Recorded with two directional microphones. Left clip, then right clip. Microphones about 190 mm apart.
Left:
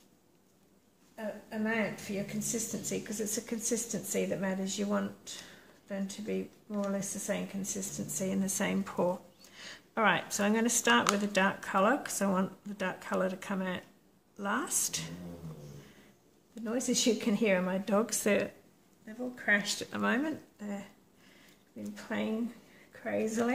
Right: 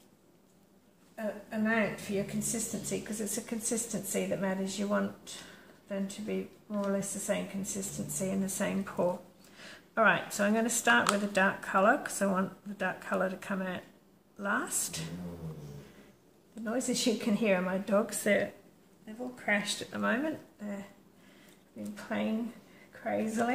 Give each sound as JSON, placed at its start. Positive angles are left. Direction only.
{"t": 1.1, "sound": "a sound", "side_deg": 35}
{"t": 2.4, "sound": "a woman's voice", "side_deg": 45}
{"t": 16.6, "sound": "a woman's voice", "side_deg": 45}
{"t": 19.8, "sound": "a woman's voice", "side_deg": 55}
{"t": 21.9, "sound": "a woman's voice", "side_deg": 45}